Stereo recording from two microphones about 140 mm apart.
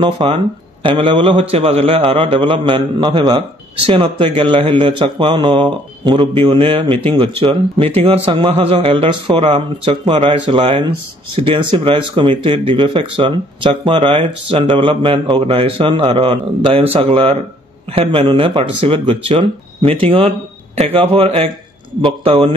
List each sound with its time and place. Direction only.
0.2 s speech: 35° right (ahead or behind)